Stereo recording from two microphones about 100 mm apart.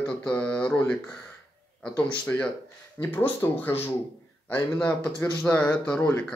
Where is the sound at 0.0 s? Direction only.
10° left (ahead or behind).